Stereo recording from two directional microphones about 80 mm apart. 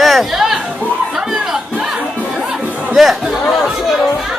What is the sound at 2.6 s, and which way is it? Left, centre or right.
Chatter, centre.